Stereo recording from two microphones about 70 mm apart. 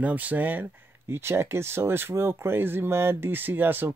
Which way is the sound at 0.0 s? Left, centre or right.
Right.